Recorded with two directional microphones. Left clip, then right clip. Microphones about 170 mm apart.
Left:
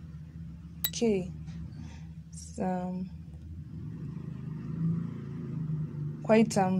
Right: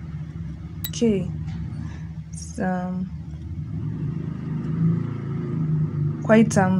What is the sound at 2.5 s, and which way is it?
Speech, 20° left (ahead or behind).